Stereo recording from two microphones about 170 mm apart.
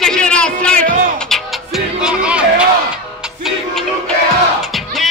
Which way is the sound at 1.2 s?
Centre (ahead or behind).